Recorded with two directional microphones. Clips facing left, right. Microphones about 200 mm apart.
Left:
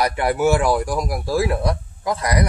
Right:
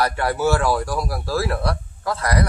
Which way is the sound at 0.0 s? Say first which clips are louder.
Left 2 dB; 15° left (ahead or behind).